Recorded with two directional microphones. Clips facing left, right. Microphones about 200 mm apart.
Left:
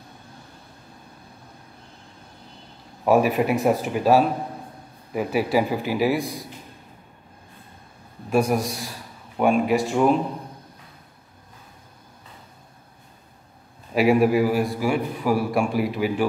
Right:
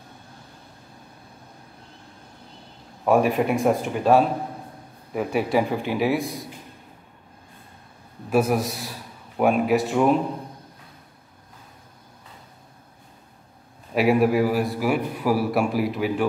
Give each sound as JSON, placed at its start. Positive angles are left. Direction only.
{"t": 3.1, "sound": "a man's voice", "side_deg": 5}
{"t": 8.3, "sound": "a man's voice", "side_deg": -5}
{"t": 13.9, "sound": "a man's voice", "side_deg": 0}